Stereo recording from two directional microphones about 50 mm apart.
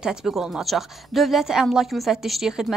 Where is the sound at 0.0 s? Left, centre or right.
Centre.